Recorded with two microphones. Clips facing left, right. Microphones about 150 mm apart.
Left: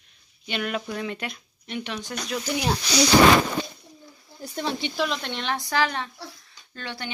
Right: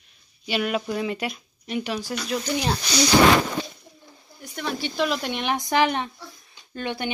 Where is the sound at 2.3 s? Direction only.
5° left (ahead or behind).